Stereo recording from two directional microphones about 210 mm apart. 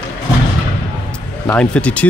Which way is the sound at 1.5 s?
5° left (ahead or behind).